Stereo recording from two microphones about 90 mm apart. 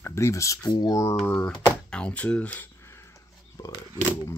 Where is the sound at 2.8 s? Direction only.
30° left (ahead or behind).